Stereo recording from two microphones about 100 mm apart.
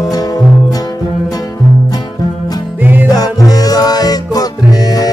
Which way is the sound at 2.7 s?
20° right (ahead or behind).